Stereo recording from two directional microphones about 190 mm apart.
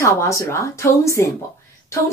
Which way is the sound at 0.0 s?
15° left (ahead or behind).